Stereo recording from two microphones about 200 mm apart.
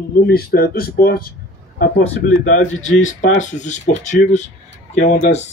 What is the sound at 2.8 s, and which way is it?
Speech, 35° left (ahead or behind).